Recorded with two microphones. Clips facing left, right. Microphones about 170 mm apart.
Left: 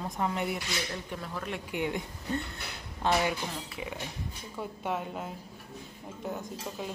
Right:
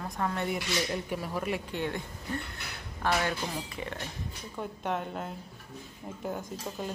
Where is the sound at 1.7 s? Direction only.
15° left (ahead or behind).